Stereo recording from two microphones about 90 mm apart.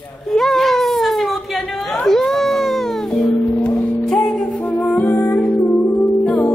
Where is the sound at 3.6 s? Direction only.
5° left (ahead or behind).